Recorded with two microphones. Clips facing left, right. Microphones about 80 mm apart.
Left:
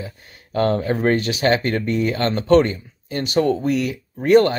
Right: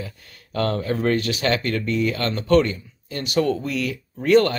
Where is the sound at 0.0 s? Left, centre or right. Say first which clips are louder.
Left 1 dB; left.